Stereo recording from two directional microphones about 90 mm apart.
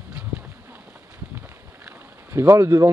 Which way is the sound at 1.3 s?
30° right (ahead or behind).